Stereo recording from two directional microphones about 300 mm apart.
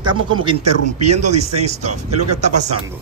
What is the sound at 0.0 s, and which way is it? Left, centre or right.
A man's voice, centre.